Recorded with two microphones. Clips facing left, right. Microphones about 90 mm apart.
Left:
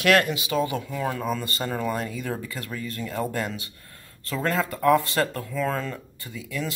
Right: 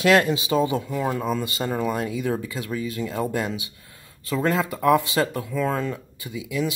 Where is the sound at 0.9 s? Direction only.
10° right (ahead or behind).